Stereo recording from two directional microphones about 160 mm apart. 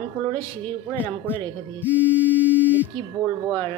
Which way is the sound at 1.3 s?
10° right (ahead or behind).